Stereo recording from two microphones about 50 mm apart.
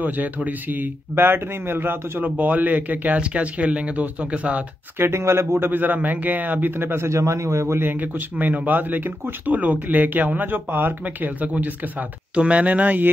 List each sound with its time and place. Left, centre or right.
0.0 s speech: right
4.9 s speech: right
5.7 s speech: right
7.1 s a man's voice: right
7.8 s speech: right
12.4 s speech: right